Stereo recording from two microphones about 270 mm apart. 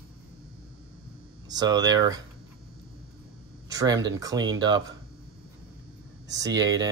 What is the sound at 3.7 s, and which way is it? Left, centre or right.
Speech, centre.